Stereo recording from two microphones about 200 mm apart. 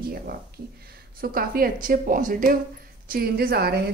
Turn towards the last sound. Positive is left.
turn(degrees=-50)  # may be behind; listen again after turning